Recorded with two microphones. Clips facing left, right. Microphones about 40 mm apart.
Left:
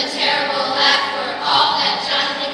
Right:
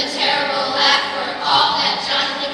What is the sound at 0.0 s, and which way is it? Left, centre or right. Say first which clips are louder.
Choir: even; centre.